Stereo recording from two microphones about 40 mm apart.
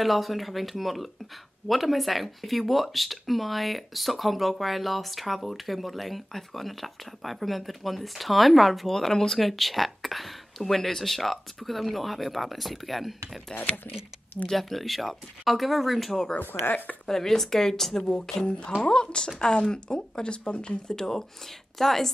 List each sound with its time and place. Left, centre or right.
0.0 s speech: centre
13.6 s speech: left
14.5 s speech: centre
16.3 s speech: left
17.1 s speech: centre
18.1 s speech: left
21.0 s speech: centre